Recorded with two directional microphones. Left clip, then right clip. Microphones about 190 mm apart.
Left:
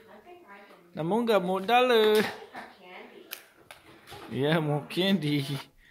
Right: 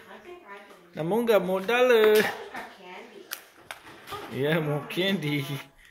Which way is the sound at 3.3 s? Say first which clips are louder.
Right 8 dB; 20° left (ahead or behind).